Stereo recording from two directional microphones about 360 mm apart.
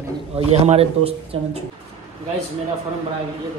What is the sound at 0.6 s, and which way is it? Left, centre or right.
Speech, centre.